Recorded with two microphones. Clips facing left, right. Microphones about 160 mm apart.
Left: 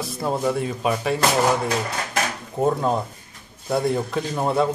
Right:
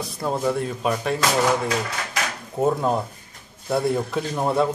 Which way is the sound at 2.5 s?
5° right (ahead or behind).